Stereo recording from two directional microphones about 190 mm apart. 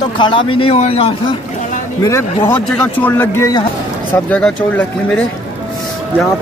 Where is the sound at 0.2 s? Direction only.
25° left (ahead or behind).